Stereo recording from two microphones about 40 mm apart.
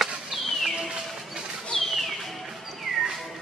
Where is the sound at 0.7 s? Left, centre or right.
Centre.